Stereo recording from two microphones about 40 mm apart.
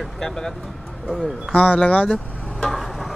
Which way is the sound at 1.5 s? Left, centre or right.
Left.